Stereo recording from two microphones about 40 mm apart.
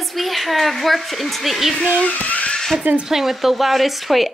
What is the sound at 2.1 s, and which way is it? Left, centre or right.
Music, left.